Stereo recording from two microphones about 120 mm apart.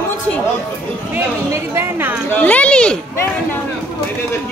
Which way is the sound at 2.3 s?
15° left (ahead or behind).